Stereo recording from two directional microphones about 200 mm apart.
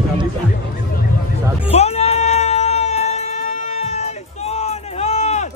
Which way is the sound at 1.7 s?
30° left (ahead or behind).